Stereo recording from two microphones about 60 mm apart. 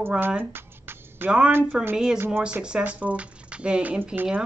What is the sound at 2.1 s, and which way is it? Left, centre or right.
Speech, right.